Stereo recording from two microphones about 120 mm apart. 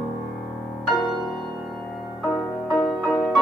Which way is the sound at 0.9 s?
40° left (ahead or behind).